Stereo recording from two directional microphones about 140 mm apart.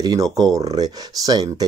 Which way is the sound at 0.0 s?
30° right (ahead or behind).